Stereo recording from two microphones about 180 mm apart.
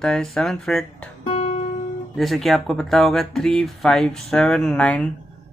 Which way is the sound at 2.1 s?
Centre (ahead or behind).